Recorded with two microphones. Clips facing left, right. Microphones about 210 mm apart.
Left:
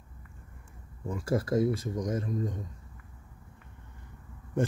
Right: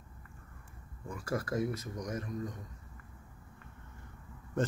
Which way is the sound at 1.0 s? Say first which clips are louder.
Left 6 dB; 25° left (ahead or behind).